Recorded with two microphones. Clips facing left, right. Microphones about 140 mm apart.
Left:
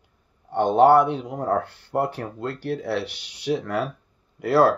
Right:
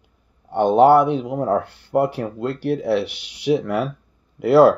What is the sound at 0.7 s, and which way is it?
Speech, 5° right (ahead or behind).